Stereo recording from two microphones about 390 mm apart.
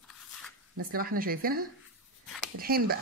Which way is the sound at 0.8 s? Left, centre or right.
Right.